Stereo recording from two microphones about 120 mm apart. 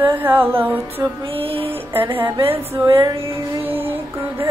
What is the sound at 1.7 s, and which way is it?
Music, 15° right (ahead or behind).